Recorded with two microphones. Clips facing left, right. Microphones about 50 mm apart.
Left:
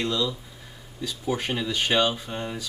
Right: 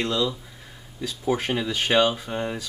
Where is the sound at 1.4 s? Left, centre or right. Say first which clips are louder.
Right 1 dB; centre.